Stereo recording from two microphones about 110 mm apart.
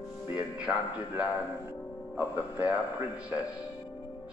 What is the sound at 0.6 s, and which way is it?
A man's voice, 10° right (ahead or behind).